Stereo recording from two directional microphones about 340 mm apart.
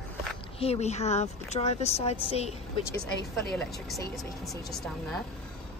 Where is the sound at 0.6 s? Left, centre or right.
Centre.